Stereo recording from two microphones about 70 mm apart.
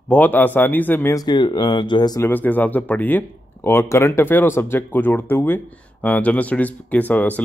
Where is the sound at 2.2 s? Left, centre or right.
Left.